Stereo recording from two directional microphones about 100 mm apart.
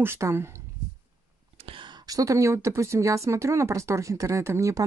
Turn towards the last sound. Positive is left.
turn(degrees=-35)  # may be behind; listen again after turning